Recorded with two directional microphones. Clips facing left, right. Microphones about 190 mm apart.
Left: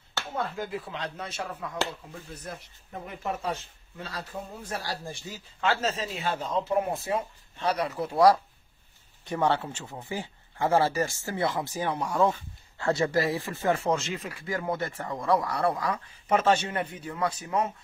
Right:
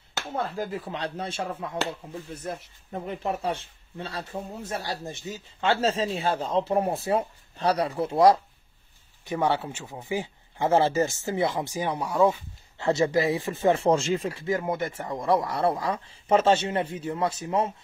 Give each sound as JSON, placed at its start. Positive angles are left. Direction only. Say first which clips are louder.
{"t": 0.4, "sound": "speech", "louder": "right 2 dB", "side_deg": -35}
{"t": 9.3, "sound": "speech", "louder": "right 1 dB", "side_deg": -10}
{"t": 12.7, "sound": "speech", "louder": "right 3 dB", "side_deg": -25}